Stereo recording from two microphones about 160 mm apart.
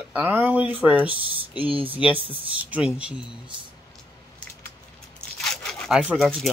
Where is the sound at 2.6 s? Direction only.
10° right (ahead or behind).